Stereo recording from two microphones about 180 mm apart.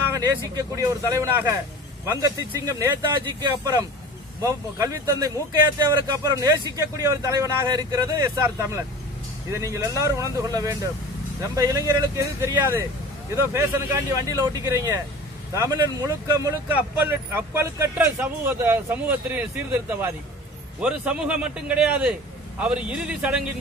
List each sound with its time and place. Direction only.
0.1 s speech: 20° right (ahead or behind)
14.1 s a man's voice: 20° right (ahead or behind)